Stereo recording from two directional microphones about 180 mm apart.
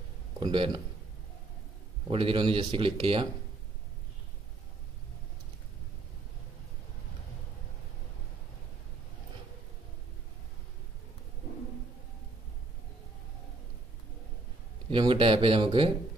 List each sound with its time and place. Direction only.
0.4 s speech: 25° right (ahead or behind)
2.0 s speech: 30° right (ahead or behind)
14.9 s speech: 30° right (ahead or behind)